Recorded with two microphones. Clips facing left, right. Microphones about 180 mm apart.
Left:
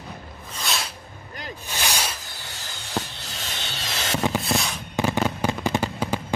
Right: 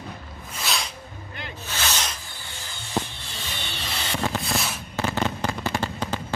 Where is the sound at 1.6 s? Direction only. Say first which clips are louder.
Left 1 dB; 15° left (ahead or behind).